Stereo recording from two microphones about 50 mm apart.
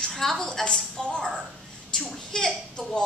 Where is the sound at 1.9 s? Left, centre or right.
Centre.